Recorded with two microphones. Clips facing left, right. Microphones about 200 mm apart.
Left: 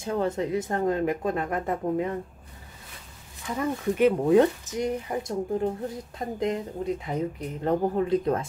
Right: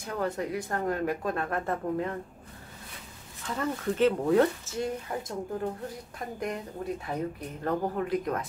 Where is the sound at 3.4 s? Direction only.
10° left (ahead or behind).